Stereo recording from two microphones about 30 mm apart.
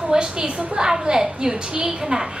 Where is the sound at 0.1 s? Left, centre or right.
Right.